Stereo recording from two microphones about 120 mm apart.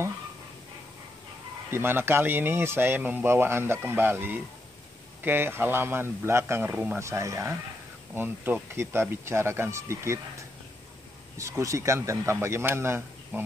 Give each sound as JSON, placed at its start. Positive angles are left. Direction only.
{"t": 1.7, "sound": "speech", "side_deg": -20}
{"t": 7.0, "sound": "speech", "side_deg": -25}
{"t": 11.3, "sound": "speech", "side_deg": -25}